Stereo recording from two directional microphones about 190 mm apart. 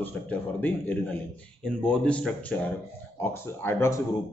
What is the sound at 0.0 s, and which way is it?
Speech, 10° left (ahead or behind).